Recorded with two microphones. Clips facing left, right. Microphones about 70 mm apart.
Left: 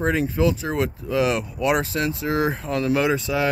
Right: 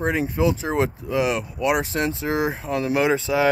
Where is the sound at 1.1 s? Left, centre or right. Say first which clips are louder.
Left 2 dB; centre.